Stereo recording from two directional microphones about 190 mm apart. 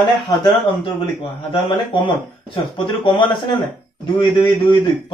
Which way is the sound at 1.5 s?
25° left (ahead or behind).